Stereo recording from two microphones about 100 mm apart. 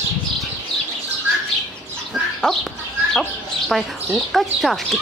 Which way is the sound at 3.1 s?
5° left (ahead or behind).